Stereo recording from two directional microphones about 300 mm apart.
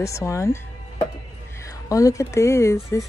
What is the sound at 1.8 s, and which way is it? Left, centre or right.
Speech, centre.